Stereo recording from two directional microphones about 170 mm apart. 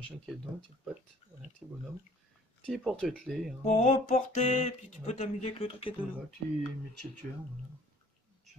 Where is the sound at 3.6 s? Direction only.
40° left (ahead or behind).